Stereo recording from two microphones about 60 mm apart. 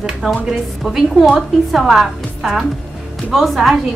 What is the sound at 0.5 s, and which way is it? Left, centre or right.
A woman's voice, centre.